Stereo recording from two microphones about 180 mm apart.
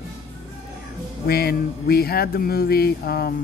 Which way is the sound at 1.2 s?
60° left (ahead or behind).